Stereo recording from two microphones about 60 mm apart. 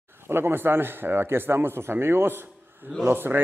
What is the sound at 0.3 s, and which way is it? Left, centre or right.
Speech, right.